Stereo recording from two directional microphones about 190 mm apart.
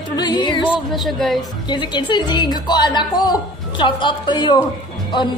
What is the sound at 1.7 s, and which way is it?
A woman's voice, 25° left (ahead or behind).